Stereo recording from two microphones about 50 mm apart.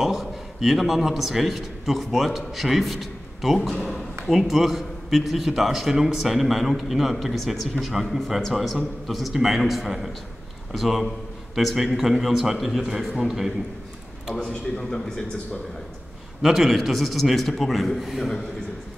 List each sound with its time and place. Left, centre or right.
0.0 s a man's voice: centre
14.4 s speech: centre
16.4 s a man's voice: centre